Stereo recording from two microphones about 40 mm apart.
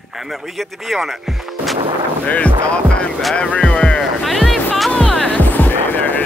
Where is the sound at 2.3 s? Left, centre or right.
Left.